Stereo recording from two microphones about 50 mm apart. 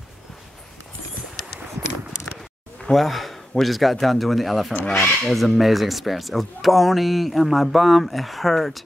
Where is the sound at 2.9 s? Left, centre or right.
Centre.